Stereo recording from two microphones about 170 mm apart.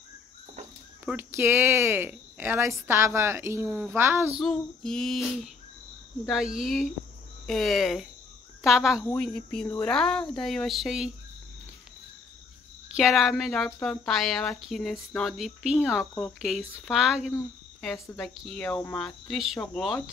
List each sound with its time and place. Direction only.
1.0 s speech: 15° right (ahead or behind)
4.4 s speech: 5° left (ahead or behind)
8.9 s speech: 15° left (ahead or behind)
9.2 s speech: 5° left (ahead or behind)
12.9 s speech: centre (ahead or behind)